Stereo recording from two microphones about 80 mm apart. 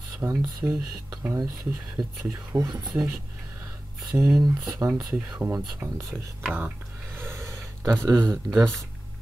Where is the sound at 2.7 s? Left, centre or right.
Right.